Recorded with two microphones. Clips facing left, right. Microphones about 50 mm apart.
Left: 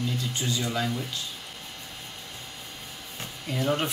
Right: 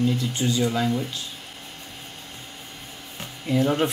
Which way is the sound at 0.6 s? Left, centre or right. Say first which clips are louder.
Right 6 dB; right.